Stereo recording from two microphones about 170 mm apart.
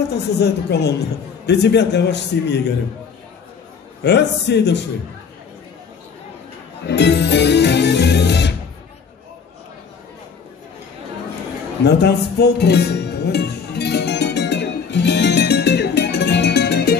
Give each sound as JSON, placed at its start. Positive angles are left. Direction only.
{"t": 0.1, "sound": "a man's voice", "side_deg": 80}
{"t": 4.0, "sound": "a man's voice", "side_deg": 90}
{"t": 6.9, "sound": "music", "side_deg": 85}
{"t": 11.8, "sound": "music", "side_deg": 80}